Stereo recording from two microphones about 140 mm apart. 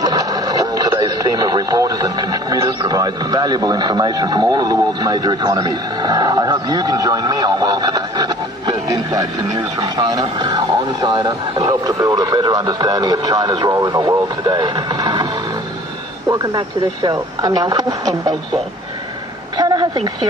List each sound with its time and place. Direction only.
0.0 s radio: 25° right (ahead or behind)
9.9 s speech: 25° right (ahead or behind)
16.3 s speech: 25° right (ahead or behind)
19.5 s a sound: 30° right (ahead or behind)